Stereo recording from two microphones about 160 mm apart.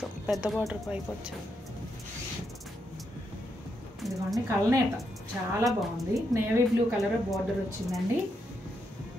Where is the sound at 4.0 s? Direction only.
Centre (ahead or behind).